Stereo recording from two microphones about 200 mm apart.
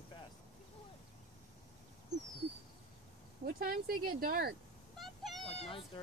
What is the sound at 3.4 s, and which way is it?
Speech, 45° right (ahead or behind).